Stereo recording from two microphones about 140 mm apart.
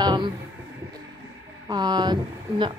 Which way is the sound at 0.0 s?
35° right (ahead or behind).